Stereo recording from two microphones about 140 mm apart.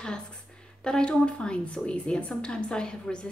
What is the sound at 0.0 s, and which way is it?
A woman's voice, 5° left (ahead or behind).